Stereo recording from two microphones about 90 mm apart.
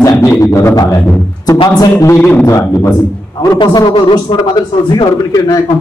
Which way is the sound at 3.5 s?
55° left (ahead or behind).